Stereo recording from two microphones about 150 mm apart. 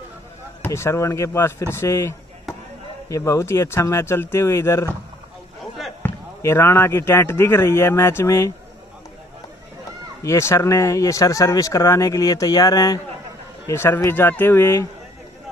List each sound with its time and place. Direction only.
0.7 s speech: 20° left (ahead or behind)
6.0 s speech: 15° left (ahead or behind)
10.2 s speech: 20° left (ahead or behind)